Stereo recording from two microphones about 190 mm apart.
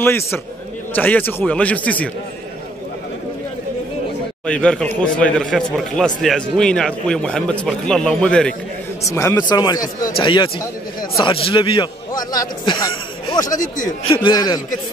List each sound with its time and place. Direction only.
0.0 s speech: 10° left (ahead or behind)
4.5 s a man's voice: 5° left (ahead or behind); by 14.6 s 20° left (ahead or behind)